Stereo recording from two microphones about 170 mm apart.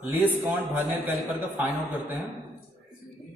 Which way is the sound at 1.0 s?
10° right (ahead or behind).